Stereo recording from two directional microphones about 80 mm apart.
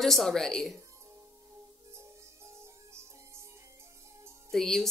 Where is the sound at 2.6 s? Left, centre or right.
Right.